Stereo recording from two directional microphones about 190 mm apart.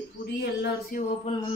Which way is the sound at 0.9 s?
45° left (ahead or behind).